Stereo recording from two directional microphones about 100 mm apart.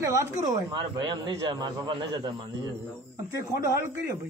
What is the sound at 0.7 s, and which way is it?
A man's voice, 50° right (ahead or behind).